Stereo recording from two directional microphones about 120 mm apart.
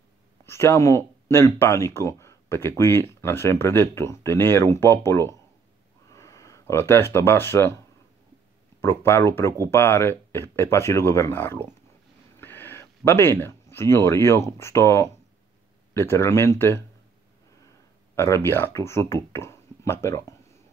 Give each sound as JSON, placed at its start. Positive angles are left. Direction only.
{"t": 0.5, "sound": "speech", "side_deg": 20}
{"t": 8.8, "sound": "speech", "side_deg": 20}
{"t": 12.4, "sound": "a sound", "side_deg": 20}
{"t": 14.6, "sound": "speech", "side_deg": 20}
{"t": 18.1, "sound": "speech", "side_deg": 20}